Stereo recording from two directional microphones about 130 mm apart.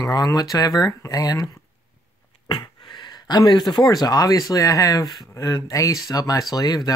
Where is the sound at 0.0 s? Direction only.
30° left (ahead or behind).